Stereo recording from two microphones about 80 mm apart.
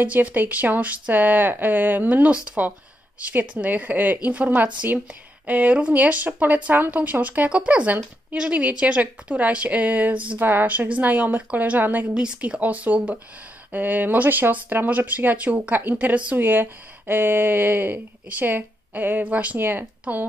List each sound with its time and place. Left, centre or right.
0.0 s speech: right